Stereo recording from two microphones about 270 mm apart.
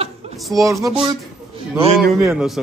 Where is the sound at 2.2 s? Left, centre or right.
Centre.